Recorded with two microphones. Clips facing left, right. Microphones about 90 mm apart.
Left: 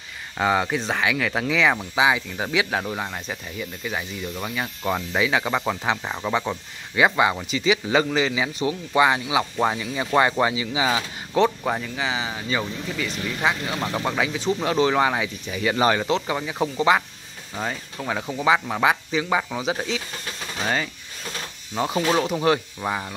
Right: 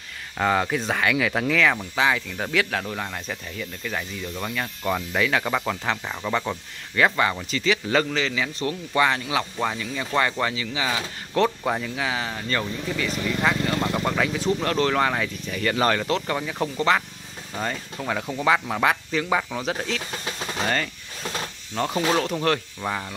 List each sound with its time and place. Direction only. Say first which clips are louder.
0.4 s speech: left 1 dB; 5° left (ahead or behind)
5.6 s speech: left 2 dB; 15° left (ahead or behind)
6.3 s speech: even; 5° left (ahead or behind)
11.3 s speech: left 1 dB; centre (ahead or behind)